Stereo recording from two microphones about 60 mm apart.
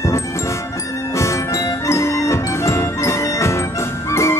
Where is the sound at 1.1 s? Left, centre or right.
Left.